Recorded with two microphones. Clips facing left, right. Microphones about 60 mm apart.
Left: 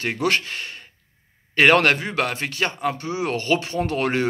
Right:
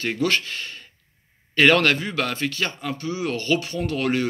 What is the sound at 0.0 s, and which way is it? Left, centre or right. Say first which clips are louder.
Speech: left 1 dB; centre.